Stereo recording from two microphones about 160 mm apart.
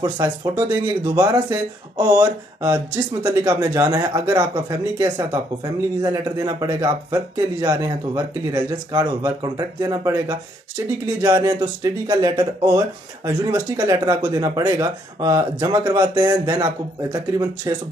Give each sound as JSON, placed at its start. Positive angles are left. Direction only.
{"t": 0.0, "sound": "speech", "side_deg": -25}